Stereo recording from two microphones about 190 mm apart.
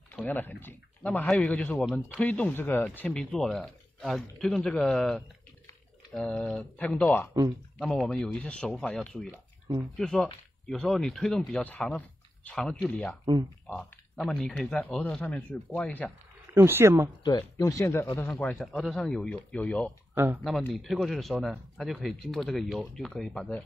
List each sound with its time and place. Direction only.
0.1 s speech: 10° left (ahead or behind)
13.2 s speech: 20° right (ahead or behind)
13.7 s speech: centre (ahead or behind)
16.5 s speech: 15° right (ahead or behind)
17.2 s speech: 20° left (ahead or behind); by 23.4 s centre (ahead or behind)